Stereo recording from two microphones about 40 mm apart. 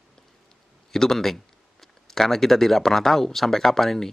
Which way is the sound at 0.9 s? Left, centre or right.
Centre.